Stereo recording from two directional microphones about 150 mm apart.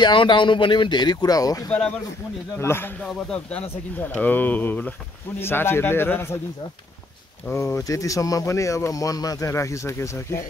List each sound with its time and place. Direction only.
0.0 s a man's voice: 30° left (ahead or behind); by 2.9 s 15° left (ahead or behind)
4.1 s a man's voice: 10° left (ahead or behind)
7.4 s speech: 15° left (ahead or behind)